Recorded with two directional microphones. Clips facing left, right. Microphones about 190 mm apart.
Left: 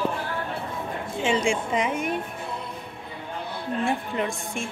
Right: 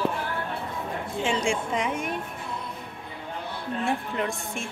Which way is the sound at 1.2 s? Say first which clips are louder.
Left 3 dB; centre (ahead or behind).